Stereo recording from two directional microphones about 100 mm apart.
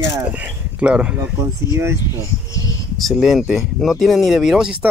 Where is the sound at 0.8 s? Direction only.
10° right (ahead or behind).